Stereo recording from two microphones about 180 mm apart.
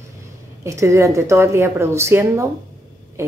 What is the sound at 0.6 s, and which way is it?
Speech, 15° right (ahead or behind).